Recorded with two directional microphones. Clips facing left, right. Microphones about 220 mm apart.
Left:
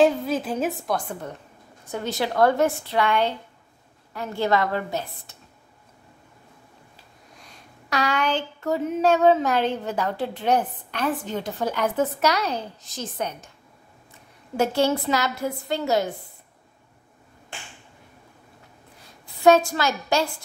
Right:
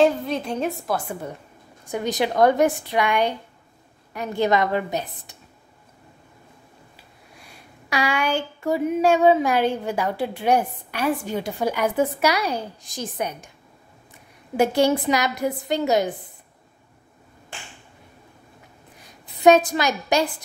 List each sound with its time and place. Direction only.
0.0 s a woman's voice: centre (ahead or behind); by 5.4 s 15° right (ahead or behind)
7.0 s speech: 10° right (ahead or behind)
14.6 s speech: 15° right (ahead or behind)
18.9 s a woman's voice: 15° right (ahead or behind)